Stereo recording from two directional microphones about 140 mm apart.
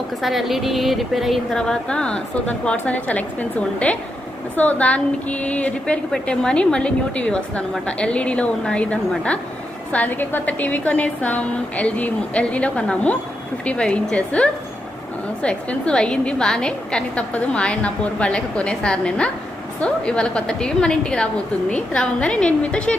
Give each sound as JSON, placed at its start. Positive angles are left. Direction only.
{"t": 0.2, "sound": "speech", "side_deg": 0}